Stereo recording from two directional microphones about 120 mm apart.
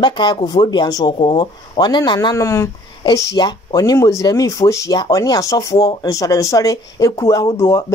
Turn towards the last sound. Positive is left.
turn(degrees=30)  # may be behind; listen again after turning